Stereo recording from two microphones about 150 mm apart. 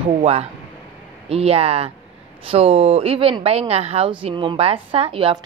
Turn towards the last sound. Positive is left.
turn(degrees=-35)  # may be behind; listen again after turning